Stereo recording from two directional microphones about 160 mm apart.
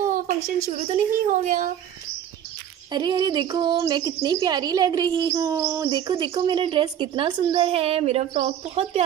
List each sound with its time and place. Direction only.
0.7 s speech: 50° right (ahead or behind)
2.9 s speech: 25° right (ahead or behind)